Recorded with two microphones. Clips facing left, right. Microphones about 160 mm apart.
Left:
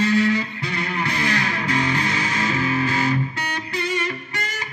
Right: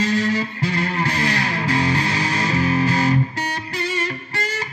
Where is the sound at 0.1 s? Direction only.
40° right (ahead or behind).